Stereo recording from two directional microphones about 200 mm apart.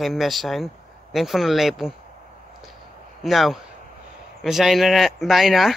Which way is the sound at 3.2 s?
Centre (ahead or behind).